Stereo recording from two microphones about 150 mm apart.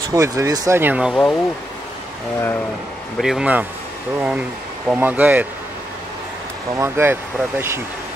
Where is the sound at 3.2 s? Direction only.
5° right (ahead or behind).